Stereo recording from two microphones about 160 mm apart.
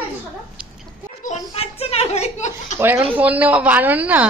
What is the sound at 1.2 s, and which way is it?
Speech, 45° left (ahead or behind).